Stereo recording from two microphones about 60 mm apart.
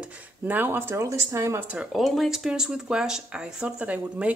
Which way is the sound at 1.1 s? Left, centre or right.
Right.